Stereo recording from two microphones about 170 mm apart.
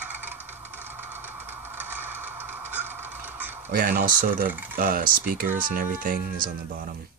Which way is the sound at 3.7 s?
55° right (ahead or behind).